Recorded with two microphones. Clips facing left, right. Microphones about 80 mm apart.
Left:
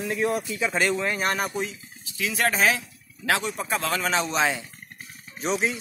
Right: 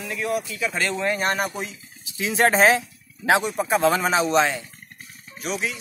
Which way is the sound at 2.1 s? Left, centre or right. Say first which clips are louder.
Right 6 dB; right.